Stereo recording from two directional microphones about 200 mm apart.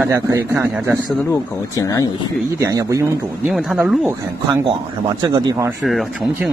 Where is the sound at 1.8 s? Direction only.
15° left (ahead or behind).